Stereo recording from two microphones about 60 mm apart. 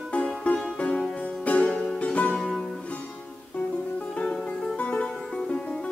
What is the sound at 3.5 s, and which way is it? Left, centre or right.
Music, centre.